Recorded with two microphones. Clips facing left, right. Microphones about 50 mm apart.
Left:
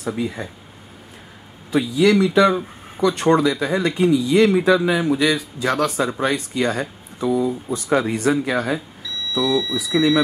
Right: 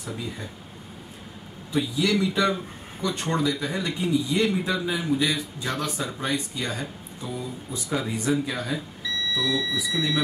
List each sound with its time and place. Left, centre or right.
0.1 s speech: left
1.7 s speech: left
9.8 s speech: left